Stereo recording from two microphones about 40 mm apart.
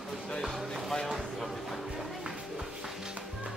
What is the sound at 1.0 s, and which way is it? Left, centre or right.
Music, centre.